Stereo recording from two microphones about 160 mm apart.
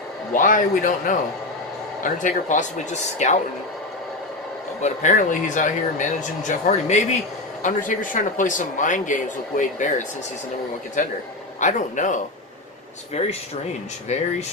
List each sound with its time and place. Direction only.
0.3 s a man's voice: 55° left (ahead or behind)
4.8 s speech: 50° left (ahead or behind)
13.2 s speech: 40° left (ahead or behind)